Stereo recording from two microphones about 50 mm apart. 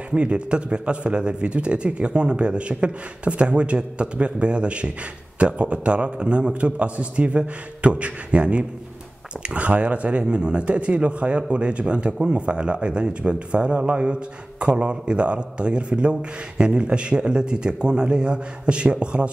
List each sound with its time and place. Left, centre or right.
0.1 s a man's voice: right